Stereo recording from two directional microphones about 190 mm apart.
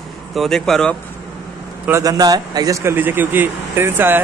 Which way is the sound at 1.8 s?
15° right (ahead or behind).